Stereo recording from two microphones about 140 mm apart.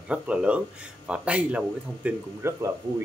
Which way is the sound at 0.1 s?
5° right (ahead or behind).